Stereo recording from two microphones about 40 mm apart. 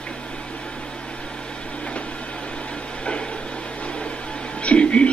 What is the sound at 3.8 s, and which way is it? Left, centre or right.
Microwave oven, left.